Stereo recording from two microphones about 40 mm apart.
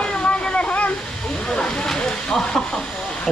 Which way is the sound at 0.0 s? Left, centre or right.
Left.